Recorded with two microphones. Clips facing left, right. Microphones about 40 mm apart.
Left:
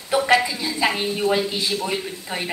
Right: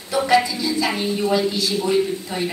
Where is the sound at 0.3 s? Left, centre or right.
Left.